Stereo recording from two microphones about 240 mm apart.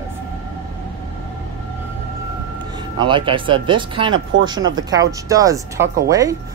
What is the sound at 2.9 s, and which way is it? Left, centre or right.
Speech, centre.